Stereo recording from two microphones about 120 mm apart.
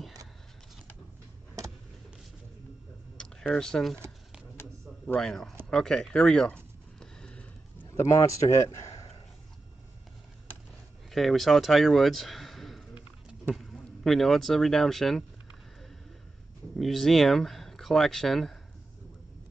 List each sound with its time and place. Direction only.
3.2 s a sound: 5° left (ahead or behind)
7.9 s speech: 25° left (ahead or behind)
11.1 s speech: centre (ahead or behind)
16.7 s speech: centre (ahead or behind)